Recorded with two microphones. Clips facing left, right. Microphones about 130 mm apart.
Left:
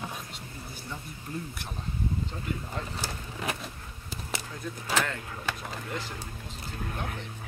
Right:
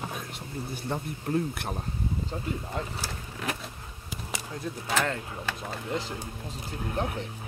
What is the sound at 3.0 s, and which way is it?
Speech, centre (ahead or behind).